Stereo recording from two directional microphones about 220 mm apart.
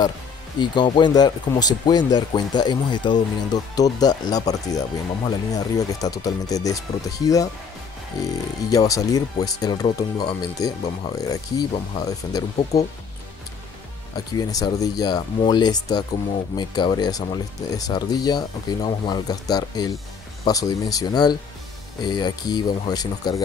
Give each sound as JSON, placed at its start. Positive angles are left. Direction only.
{"t": 0.6, "sound": "speech", "side_deg": 20}
{"t": 14.1, "sound": "speech", "side_deg": 15}